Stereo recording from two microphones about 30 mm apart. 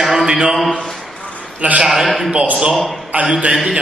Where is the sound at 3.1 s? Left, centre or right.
Right.